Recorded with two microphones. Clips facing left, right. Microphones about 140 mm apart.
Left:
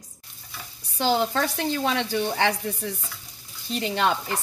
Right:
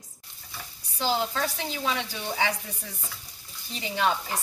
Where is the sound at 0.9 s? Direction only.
65° left (ahead or behind).